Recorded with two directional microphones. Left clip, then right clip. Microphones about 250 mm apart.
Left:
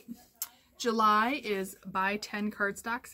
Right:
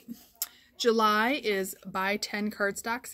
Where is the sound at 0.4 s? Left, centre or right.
Centre.